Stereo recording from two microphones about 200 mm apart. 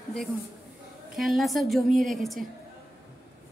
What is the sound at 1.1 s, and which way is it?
A woman's voice, centre (ahead or behind).